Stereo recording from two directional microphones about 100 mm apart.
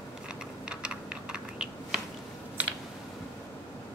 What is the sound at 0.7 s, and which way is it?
Typing, 10° right (ahead or behind).